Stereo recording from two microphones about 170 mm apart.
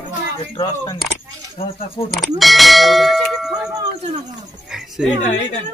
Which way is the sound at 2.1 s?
Centre (ahead or behind).